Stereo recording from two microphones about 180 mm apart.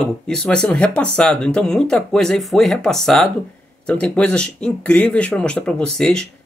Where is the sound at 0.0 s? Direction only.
5° left (ahead or behind).